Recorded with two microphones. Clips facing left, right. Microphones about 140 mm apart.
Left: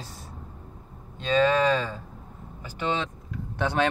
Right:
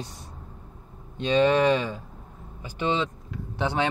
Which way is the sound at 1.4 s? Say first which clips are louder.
Right 2 dB; 15° right (ahead or behind).